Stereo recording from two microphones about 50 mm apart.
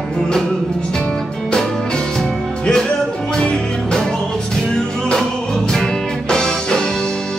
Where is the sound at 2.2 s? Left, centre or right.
Centre.